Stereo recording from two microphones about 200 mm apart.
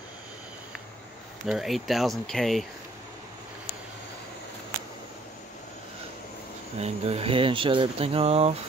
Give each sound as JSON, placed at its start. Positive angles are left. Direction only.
{"t": 1.4, "sound": "speech", "side_deg": 0}
{"t": 6.8, "sound": "speech", "side_deg": -30}